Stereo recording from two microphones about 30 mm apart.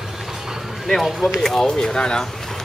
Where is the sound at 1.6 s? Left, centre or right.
Left.